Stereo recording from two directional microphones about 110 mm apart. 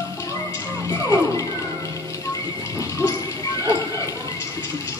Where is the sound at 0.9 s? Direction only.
30° left (ahead or behind).